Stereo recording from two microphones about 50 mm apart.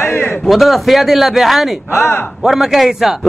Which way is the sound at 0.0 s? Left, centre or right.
Left.